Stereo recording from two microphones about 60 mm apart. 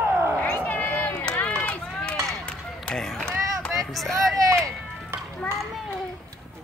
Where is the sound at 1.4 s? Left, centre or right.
Left.